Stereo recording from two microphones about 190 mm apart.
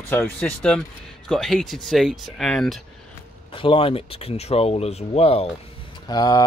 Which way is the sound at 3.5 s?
25° left (ahead or behind).